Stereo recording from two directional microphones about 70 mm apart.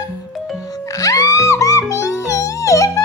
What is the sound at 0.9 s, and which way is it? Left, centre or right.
Music, left.